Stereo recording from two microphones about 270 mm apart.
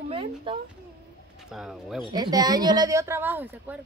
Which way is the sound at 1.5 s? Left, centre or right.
Centre.